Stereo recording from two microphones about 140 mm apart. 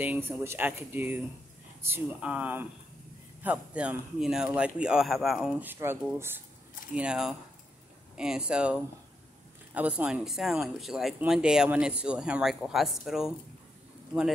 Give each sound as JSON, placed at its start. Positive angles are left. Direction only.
{"t": 0.0, "sound": "speech", "side_deg": -10}
{"t": 5.6, "sound": "speech", "side_deg": -15}
{"t": 9.8, "sound": "speech", "side_deg": -10}